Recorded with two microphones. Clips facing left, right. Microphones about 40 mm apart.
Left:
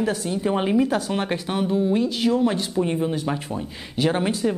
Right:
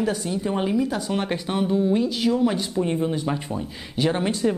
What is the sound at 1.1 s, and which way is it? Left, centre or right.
Speech, centre.